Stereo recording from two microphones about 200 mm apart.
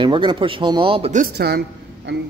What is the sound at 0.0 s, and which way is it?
Speech, 25° right (ahead or behind).